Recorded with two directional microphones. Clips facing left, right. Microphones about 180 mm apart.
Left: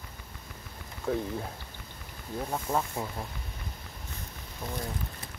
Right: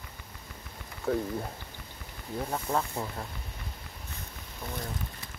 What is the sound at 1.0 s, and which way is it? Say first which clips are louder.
Speech: right 1 dB; centre (ahead or behind).